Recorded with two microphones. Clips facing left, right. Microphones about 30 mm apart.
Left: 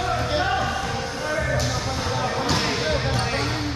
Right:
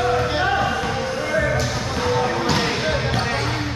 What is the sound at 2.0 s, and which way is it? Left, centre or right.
Music, right.